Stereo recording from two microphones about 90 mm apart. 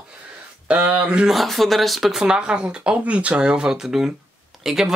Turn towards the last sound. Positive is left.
turn(degrees=-5)  # may be behind; listen again after turning